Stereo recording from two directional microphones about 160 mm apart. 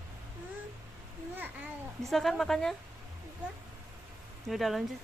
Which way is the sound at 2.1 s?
Centre (ahead or behind).